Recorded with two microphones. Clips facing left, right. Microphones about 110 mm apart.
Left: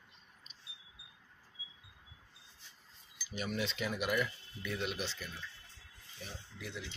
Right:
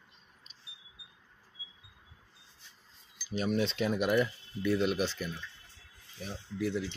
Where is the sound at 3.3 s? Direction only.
30° right (ahead or behind); by 5.3 s 50° right (ahead or behind).